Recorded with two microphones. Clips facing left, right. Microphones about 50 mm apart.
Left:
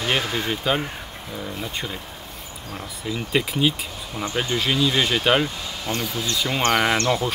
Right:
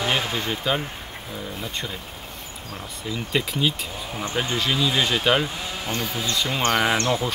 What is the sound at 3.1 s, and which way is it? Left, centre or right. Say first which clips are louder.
Speech: left 2 dB; centre.